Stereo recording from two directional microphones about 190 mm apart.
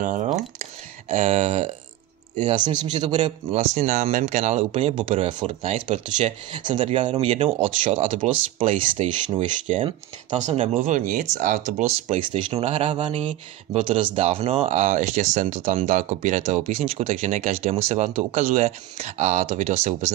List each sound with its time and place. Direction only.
0.0 s speech: 45° right (ahead or behind)
0.6 s a sound: 35° right (ahead or behind)
2.4 s speech: 25° right (ahead or behind); by 4.9 s 40° right (ahead or behind)
4.9 s speech: 30° right (ahead or behind)
7.0 s speech: 35° right (ahead or behind)
12.1 s speech: 30° right (ahead or behind)